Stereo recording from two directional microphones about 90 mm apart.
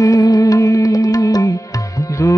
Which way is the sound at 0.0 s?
45° left (ahead or behind).